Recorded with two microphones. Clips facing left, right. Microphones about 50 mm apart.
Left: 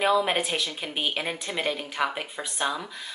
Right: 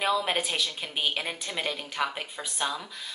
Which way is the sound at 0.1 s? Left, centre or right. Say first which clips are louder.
Left 4 dB; centre.